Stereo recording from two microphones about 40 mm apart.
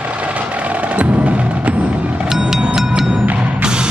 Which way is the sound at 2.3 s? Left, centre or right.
Centre.